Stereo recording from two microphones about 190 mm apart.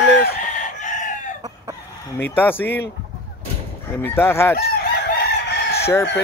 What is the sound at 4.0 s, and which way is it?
Speech, 10° left (ahead or behind).